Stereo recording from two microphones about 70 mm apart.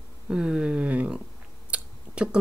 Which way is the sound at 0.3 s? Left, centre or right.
Centre.